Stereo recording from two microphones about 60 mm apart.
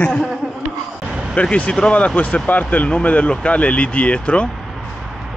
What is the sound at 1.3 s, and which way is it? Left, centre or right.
Speech, centre.